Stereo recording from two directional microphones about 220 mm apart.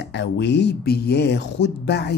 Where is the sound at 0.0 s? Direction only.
55° left (ahead or behind).